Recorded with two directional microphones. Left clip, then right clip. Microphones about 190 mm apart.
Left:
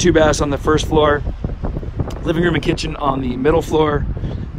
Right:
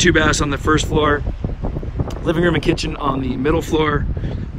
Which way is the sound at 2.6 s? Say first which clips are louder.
Even; 10° left (ahead or behind).